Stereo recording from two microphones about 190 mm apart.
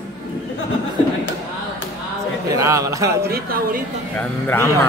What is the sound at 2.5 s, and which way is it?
Speech, 15° right (ahead or behind).